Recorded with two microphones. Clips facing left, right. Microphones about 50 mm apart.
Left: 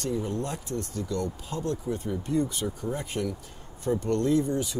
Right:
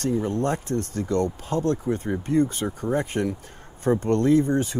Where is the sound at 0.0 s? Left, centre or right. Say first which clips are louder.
Right 6 dB; right.